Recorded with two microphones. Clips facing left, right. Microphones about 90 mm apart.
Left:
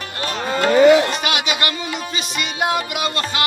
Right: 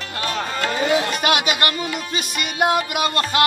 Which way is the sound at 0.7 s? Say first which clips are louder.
Left 10 dB; 70° left (ahead or behind).